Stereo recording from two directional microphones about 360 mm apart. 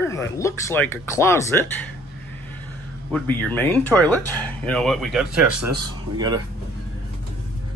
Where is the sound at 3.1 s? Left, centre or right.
Centre.